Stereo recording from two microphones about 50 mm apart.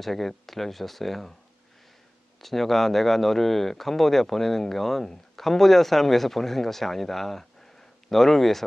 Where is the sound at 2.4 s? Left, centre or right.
Centre.